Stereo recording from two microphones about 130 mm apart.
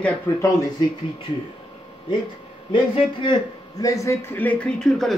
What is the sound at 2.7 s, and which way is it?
Speech, 40° left (ahead or behind).